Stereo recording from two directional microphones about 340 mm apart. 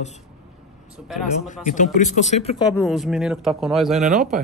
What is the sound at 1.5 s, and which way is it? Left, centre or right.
Speech, left.